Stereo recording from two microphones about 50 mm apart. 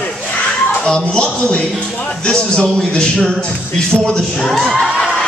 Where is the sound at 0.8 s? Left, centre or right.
Centre.